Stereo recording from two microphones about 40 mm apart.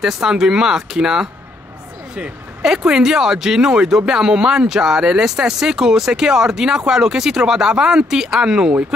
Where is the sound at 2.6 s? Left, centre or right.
Centre.